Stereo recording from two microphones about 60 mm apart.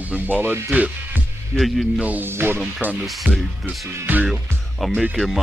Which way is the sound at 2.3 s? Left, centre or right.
Right.